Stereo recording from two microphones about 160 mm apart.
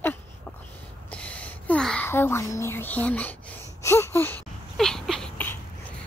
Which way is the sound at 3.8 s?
15° left (ahead or behind).